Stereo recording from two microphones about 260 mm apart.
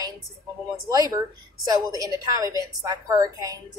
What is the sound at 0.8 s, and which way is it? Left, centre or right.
A woman's voice, centre.